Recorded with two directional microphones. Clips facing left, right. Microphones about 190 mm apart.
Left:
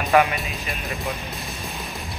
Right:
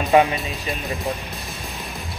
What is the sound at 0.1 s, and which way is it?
Speech, 25° right (ahead or behind).